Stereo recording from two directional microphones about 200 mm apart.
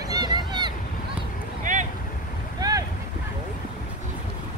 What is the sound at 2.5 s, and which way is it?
Boat, 20° right (ahead or behind).